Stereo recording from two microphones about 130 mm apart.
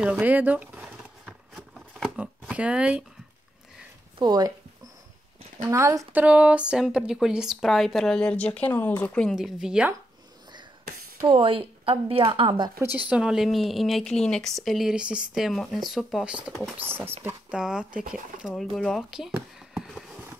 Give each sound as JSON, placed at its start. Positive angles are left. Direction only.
{"t": 0.0, "sound": "a sound", "side_deg": -10}
{"t": 2.5, "sound": "speech", "side_deg": -10}
{"t": 4.2, "sound": "speech", "side_deg": -35}
{"t": 5.6, "sound": "a woman's voice", "side_deg": -25}
{"t": 6.2, "sound": "a woman's voice", "side_deg": -10}
{"t": 9.3, "sound": "a woman's voice", "side_deg": -5}
{"t": 11.2, "sound": "speech", "side_deg": -45}
{"t": 12.7, "sound": "speech", "side_deg": -15}
{"t": 13.1, "sound": "a woman's voice", "side_deg": -5}
{"t": 16.8, "sound": "a woman's voice", "side_deg": -15}
{"t": 19.7, "sound": "a sound", "side_deg": 0}